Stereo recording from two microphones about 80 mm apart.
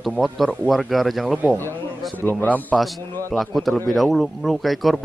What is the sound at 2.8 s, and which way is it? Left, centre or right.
A man's voice, centre.